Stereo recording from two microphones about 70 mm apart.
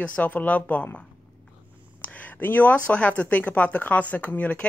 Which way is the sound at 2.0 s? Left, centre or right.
Left.